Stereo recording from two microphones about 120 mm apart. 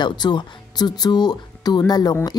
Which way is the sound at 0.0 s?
40° left (ahead or behind).